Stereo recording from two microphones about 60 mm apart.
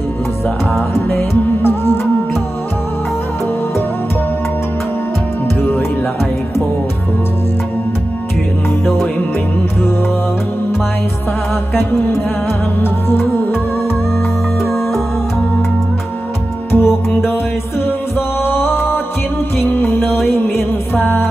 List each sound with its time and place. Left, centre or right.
1.3 s music: left
5.6 s music: left
12.8 s music: left
16.7 s music: left
18.4 s music: left